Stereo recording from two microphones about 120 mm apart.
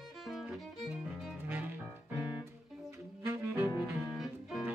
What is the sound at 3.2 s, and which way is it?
Bowed string instrument, 20° right (ahead or behind).